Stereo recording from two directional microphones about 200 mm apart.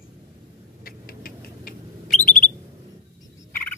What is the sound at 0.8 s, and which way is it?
Rodents, 45° left (ahead or behind).